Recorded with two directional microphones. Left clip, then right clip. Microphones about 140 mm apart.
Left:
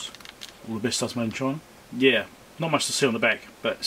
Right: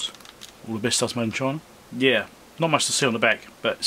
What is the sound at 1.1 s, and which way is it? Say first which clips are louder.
Speech: right 3 dB; 45° right (ahead or behind).